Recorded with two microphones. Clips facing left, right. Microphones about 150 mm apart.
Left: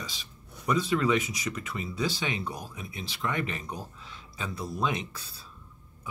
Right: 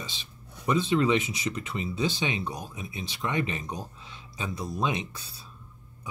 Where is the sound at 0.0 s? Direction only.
20° right (ahead or behind).